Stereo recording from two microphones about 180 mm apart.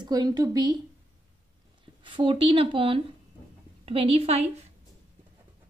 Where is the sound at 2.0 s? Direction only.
30° right (ahead or behind).